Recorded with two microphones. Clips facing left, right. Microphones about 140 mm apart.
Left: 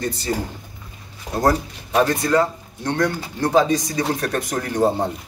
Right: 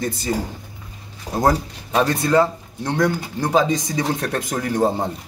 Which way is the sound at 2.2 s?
20° right (ahead or behind).